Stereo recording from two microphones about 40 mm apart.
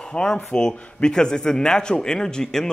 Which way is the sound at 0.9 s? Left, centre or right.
Centre.